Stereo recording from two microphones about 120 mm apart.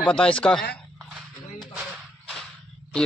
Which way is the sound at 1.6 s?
Centre (ahead or behind).